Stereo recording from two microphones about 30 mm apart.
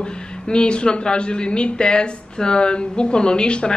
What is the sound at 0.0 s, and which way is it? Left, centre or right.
A woman's voice, left.